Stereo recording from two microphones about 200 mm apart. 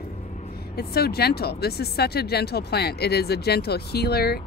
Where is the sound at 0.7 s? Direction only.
50° left (ahead or behind).